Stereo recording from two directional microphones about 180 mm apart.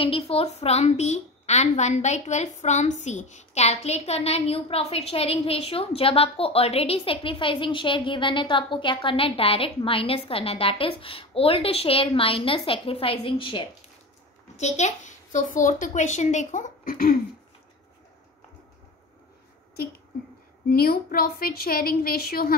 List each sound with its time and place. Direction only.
0.0 s a woman's voice: 30° left (ahead or behind)
14.6 s a child's voice: 40° left (ahead or behind)
20.7 s a woman's voice: 60° left (ahead or behind)